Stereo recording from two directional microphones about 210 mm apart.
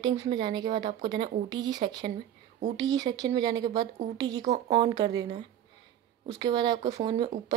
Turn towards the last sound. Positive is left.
turn(degrees=-20)  # may be behind; listen again after turning